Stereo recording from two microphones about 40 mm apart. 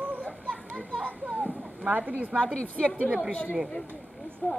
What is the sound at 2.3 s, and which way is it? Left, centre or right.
A woman's voice, left.